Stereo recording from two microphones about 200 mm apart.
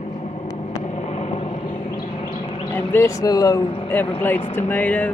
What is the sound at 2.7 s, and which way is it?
Speech, 10° left (ahead or behind).